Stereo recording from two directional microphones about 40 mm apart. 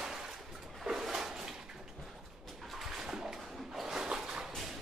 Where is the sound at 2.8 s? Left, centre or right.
Centre.